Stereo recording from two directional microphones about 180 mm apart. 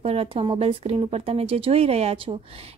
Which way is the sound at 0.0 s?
30° right (ahead or behind).